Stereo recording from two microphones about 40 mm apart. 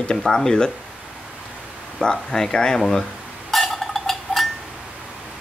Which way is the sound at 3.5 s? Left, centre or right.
Centre.